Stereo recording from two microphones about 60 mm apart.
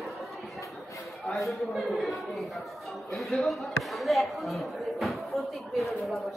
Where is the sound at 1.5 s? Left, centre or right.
Centre.